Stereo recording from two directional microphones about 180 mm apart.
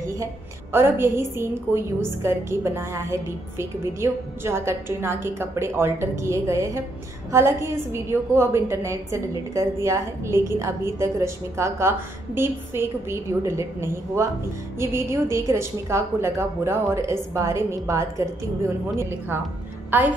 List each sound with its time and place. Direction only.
0.0 s a woman's voice: 15° right (ahead or behind)